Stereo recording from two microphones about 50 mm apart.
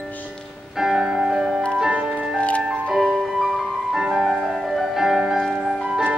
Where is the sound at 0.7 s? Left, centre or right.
Centre.